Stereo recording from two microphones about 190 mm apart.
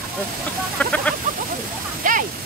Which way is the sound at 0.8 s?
5° left (ahead or behind).